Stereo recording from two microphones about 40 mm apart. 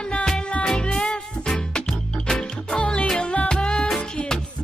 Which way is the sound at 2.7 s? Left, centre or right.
Left.